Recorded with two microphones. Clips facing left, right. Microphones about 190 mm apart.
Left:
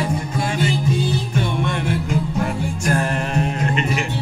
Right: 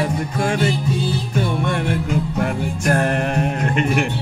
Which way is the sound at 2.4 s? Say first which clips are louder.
Right 2 dB; 60° right (ahead or behind).